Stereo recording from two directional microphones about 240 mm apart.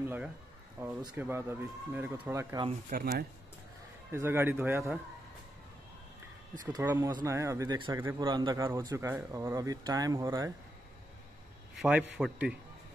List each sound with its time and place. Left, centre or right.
0.0 s speech: centre
2.9 s speech: right
4.1 s speech: centre
6.6 s speech: centre
12.2 s a man's voice: centre